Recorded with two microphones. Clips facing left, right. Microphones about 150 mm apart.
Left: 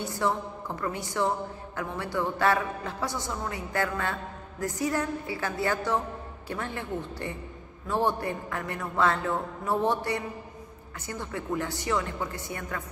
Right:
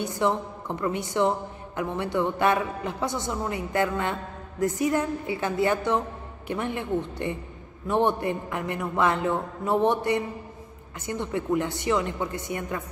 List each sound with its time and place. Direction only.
0.0 s a man's voice: 20° right (ahead or behind)